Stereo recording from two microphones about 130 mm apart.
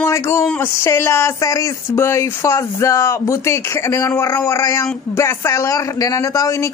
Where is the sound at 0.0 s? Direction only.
20° left (ahead or behind).